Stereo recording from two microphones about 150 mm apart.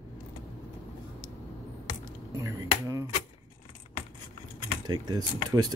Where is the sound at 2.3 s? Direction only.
20° right (ahead or behind).